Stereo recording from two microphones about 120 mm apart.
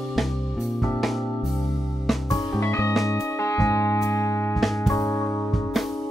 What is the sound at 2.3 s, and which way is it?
Music, 25° left (ahead or behind).